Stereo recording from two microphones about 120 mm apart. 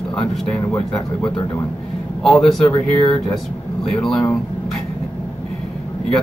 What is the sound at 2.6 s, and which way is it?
Speech, 40° left (ahead or behind).